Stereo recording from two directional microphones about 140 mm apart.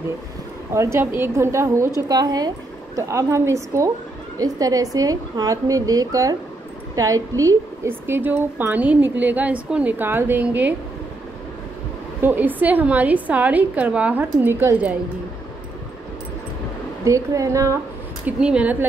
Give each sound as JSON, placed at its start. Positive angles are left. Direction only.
{"t": 0.7, "sound": "a woman's voice", "side_deg": -20}
{"t": 12.2, "sound": "a woman's voice", "side_deg": -15}
{"t": 17.0, "sound": "a woman's voice", "side_deg": -20}
{"t": 18.2, "sound": "a woman's voice", "side_deg": -10}